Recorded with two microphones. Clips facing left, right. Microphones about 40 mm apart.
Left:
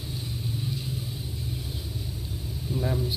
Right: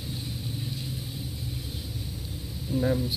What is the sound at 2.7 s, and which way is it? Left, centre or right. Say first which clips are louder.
Speech: right 4 dB; left.